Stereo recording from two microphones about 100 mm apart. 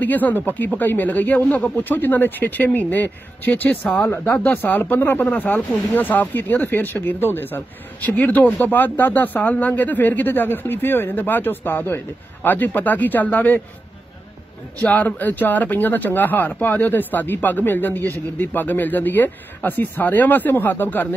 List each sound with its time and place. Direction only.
0.0 s speech: 15° left (ahead or behind)
14.8 s speech: 15° left (ahead or behind)